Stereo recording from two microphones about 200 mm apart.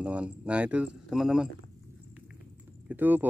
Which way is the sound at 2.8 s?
10° right (ahead or behind).